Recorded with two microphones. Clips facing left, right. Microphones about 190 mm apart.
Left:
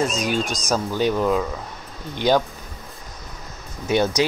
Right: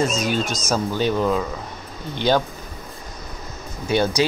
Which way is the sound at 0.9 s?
10° left (ahead or behind).